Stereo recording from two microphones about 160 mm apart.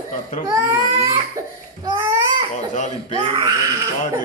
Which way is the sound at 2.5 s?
50° left (ahead or behind).